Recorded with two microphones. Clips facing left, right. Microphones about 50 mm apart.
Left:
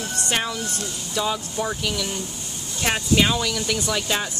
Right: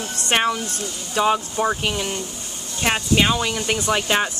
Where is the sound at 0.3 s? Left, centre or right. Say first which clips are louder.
Right 7 dB; right.